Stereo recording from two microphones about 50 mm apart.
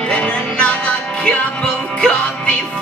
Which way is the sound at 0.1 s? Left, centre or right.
Left.